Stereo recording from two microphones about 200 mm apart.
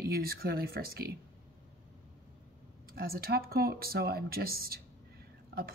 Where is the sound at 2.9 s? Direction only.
50° right (ahead or behind).